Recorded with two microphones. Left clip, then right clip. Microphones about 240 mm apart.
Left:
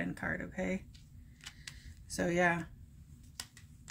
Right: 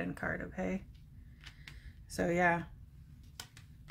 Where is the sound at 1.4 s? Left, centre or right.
Left.